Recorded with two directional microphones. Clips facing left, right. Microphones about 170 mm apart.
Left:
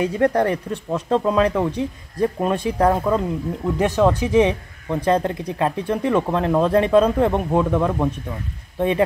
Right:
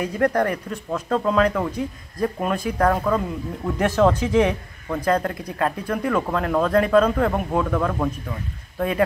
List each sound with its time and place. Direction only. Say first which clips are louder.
0.0 s speech: left 3 dB; 30° left (ahead or behind)
3.7 s speech: even; 15° left (ahead or behind)